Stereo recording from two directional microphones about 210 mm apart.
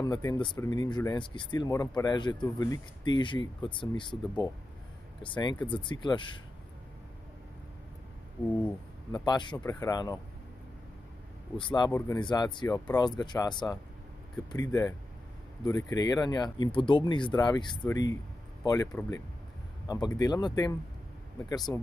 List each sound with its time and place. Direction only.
0.0 s speech: 20° left (ahead or behind)
9.1 s speech: 20° left (ahead or behind)
11.5 s speech: 20° left (ahead or behind)